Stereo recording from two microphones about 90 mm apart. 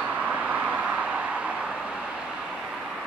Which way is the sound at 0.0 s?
15° right (ahead or behind).